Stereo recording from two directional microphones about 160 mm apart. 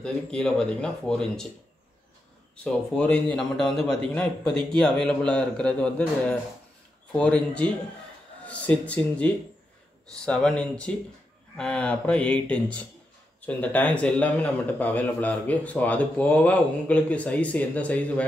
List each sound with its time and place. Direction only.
0.0 s a man's voice: 5° left (ahead or behind)
2.5 s a man's voice: 5° left (ahead or behind)